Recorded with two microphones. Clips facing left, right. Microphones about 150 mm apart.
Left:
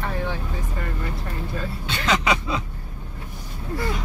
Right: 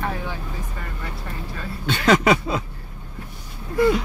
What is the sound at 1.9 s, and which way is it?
Speech, 50° right (ahead or behind).